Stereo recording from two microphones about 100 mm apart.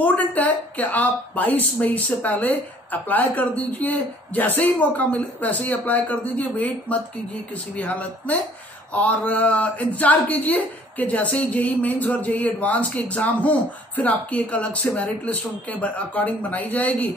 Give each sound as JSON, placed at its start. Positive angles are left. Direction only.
{"t": 0.0, "sound": "speech", "side_deg": 15}